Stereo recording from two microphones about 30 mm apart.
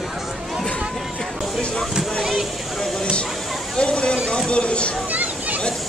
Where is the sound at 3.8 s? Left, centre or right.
Left.